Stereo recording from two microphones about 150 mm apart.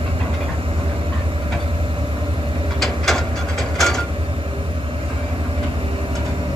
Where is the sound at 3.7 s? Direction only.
Centre (ahead or behind).